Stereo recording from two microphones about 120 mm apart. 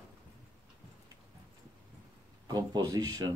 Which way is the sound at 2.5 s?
35° right (ahead or behind).